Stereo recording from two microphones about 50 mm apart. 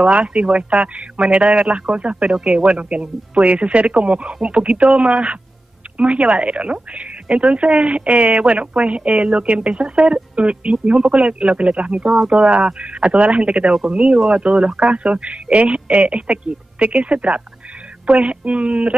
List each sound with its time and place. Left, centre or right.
0.1 s speech: right